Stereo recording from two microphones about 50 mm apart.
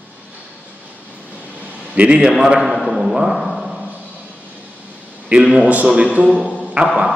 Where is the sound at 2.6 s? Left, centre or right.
Centre.